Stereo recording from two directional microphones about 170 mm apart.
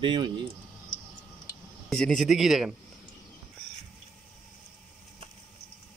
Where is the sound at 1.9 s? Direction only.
5° left (ahead or behind).